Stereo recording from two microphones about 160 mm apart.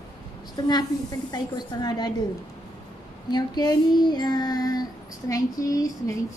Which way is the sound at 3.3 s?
25° left (ahead or behind).